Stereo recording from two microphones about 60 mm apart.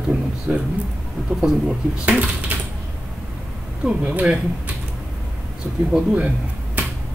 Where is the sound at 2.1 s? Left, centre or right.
Right.